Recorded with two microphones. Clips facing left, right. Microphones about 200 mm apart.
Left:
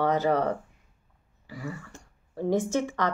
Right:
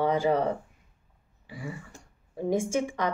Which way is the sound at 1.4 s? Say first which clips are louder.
Left 2 dB; 20° right (ahead or behind).